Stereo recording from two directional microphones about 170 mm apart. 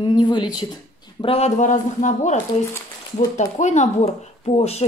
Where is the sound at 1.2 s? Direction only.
35° left (ahead or behind).